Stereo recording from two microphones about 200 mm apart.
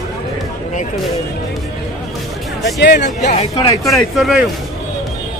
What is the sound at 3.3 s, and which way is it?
Speech, 30° left (ahead or behind).